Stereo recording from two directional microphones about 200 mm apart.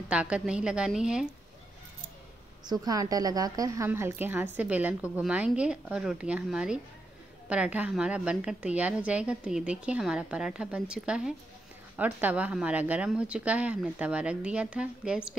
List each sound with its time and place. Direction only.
0.1 s a woman's voice: 5° right (ahead or behind)
2.6 s a woman's voice: 20° right (ahead or behind)